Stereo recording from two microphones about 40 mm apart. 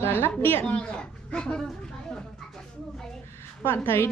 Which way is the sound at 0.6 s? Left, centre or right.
Left.